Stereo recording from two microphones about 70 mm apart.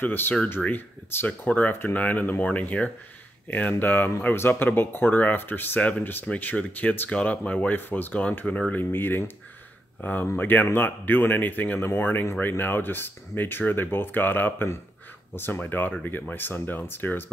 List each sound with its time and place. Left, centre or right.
0.0 s speech: left
10.2 s speech: left